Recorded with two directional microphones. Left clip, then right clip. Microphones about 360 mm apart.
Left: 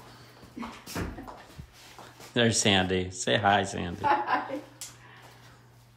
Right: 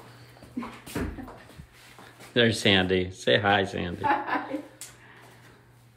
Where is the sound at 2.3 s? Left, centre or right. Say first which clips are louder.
Right 2 dB; centre.